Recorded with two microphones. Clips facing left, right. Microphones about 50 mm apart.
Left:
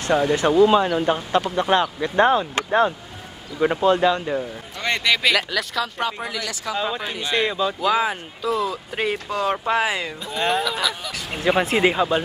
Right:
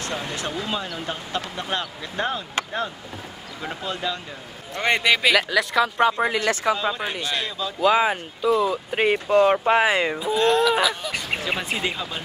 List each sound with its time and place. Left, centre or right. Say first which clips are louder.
0.0 s speech: left 10 dB; left
0.6 s speech: left 13 dB; left
4.8 s speech: right 1 dB; centre
5.2 s speech: right 2 dB; centre
5.9 s speech: right 6 dB; right
7.2 s speech: left 5 dB; left
7.8 s speech: right 5 dB; centre
10.4 s speech: right 2 dB; centre
10.8 s speech: right 3 dB; centre
11.4 s speech: left 12 dB; left
11.8 s speech: left 9 dB; left